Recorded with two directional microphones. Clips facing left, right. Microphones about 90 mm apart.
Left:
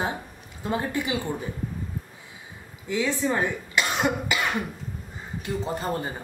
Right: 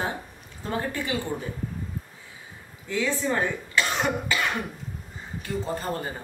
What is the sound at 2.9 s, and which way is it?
Speech, 15° left (ahead or behind).